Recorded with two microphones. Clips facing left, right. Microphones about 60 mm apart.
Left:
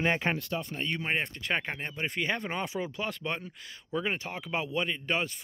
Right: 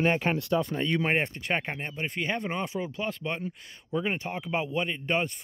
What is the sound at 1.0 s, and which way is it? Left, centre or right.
Speech, right.